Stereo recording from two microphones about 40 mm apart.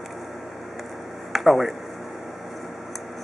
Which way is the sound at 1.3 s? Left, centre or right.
Centre.